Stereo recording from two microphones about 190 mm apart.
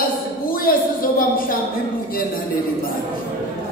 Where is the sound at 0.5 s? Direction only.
50° left (ahead or behind).